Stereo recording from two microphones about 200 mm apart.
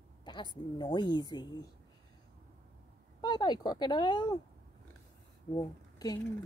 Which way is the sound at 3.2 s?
20° left (ahead or behind).